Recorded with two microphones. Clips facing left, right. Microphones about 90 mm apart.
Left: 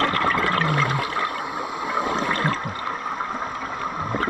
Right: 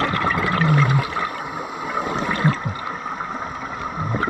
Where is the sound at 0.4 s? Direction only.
20° right (ahead or behind).